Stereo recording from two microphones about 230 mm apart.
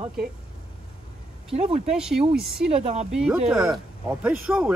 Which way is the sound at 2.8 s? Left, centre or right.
Right.